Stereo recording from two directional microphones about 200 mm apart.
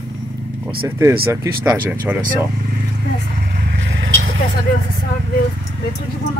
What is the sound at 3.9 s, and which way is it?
Vehicle, 70° right (ahead or behind).